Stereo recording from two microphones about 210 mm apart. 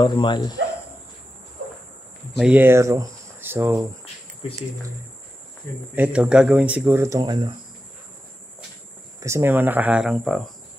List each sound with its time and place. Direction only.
0.0 s speech: 20° left (ahead or behind)
2.3 s speech: 5° right (ahead or behind)
5.9 s speech: 5° right (ahead or behind)
9.2 s speech: 10° right (ahead or behind)